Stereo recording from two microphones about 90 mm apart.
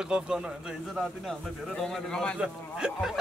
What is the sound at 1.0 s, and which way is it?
A man's voice, 5° left (ahead or behind).